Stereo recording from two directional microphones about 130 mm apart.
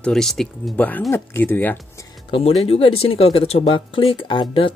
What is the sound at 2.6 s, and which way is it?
Speech, 50° left (ahead or behind).